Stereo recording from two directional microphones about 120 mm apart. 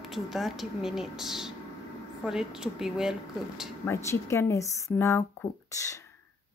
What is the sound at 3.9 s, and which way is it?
Speech, 25° left (ahead or behind).